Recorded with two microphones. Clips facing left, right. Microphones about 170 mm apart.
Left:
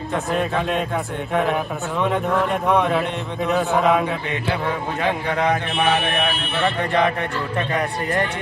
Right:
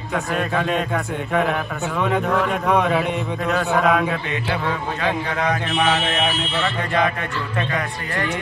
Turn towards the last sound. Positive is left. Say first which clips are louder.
# right 1 dB
turn(degrees=60)  # may be behind; listen again after turning